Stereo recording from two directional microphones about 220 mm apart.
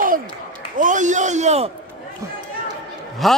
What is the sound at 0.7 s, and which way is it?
Speech, 35° right (ahead or behind).